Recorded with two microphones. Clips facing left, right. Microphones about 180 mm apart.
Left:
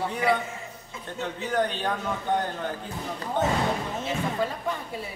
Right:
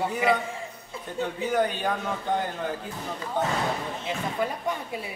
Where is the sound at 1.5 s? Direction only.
5° right (ahead or behind).